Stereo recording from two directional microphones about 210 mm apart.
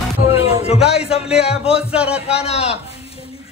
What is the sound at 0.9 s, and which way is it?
Speech, 30° left (ahead or behind).